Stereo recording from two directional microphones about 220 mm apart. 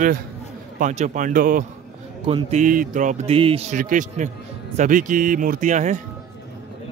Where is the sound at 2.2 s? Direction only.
30° right (ahead or behind).